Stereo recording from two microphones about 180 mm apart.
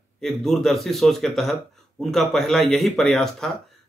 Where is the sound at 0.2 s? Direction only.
Centre (ahead or behind).